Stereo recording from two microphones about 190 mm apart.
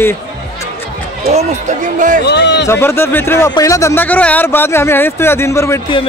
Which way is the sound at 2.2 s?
65° left (ahead or behind).